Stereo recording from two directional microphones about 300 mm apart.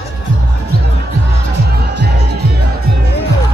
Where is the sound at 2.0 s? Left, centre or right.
Right.